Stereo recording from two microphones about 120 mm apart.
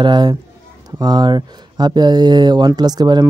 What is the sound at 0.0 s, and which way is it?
Speech, 35° right (ahead or behind).